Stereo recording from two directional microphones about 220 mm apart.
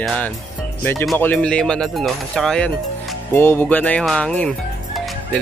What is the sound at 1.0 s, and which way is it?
Speech, 5° left (ahead or behind).